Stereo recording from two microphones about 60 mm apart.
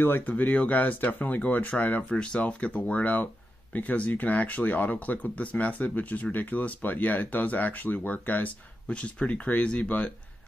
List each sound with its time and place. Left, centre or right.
0.0 s speech: left
2.1 s speech: centre